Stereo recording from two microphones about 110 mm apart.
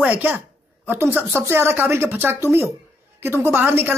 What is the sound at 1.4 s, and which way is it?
A woman's voice, 20° right (ahead or behind).